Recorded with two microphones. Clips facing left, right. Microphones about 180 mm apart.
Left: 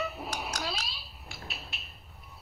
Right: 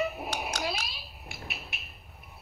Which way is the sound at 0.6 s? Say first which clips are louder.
Right 3 dB; 10° right (ahead or behind).